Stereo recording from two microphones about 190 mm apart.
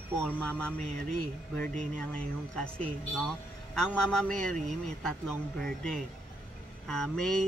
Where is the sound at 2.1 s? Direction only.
5° left (ahead or behind).